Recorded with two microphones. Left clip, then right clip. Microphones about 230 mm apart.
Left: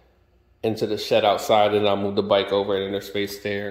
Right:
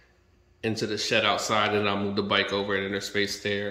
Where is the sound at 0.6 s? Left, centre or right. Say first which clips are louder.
Left 4 dB; centre.